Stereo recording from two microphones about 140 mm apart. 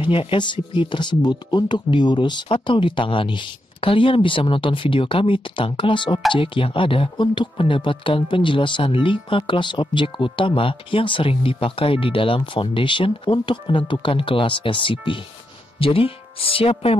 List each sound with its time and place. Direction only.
0.0 s speech: 40° left (ahead or behind)